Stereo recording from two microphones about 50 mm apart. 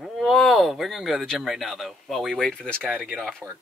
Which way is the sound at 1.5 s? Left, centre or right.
Centre.